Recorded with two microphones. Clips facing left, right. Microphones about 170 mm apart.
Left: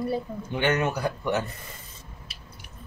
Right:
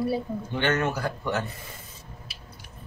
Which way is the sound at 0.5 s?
15° left (ahead or behind).